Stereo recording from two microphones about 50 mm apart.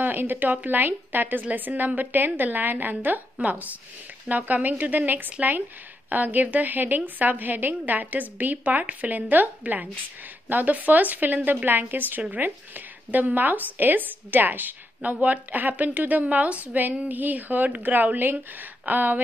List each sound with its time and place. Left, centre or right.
0.0 s a woman's voice: right
17.9 s a woman's voice: right